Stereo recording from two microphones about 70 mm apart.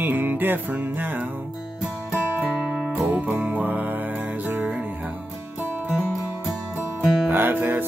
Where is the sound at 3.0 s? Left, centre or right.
Right.